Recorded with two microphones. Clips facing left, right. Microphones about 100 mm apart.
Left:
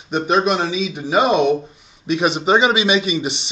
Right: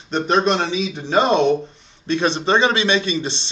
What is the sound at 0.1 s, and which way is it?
A man's voice, 5° left (ahead or behind).